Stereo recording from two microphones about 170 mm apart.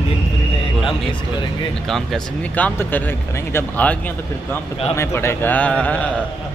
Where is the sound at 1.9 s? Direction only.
Centre (ahead or behind).